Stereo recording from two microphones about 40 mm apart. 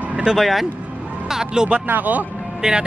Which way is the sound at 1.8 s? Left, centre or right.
Right.